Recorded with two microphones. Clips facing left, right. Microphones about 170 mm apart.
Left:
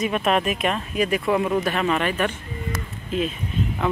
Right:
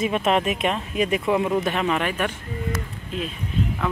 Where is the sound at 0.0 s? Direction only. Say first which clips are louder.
Even; 25° right (ahead or behind).